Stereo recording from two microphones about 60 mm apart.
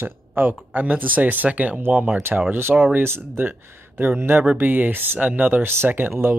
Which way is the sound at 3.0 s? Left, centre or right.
Right.